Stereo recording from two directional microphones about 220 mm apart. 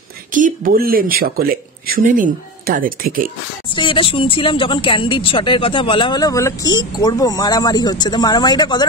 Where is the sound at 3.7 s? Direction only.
20° left (ahead or behind).